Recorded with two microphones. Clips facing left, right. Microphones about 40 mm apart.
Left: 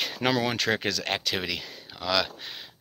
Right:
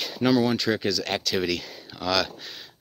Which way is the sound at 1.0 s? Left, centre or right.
Left.